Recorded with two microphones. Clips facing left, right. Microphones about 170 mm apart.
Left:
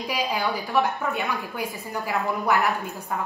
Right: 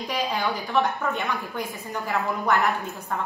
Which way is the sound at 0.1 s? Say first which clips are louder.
Even; 5° left (ahead or behind).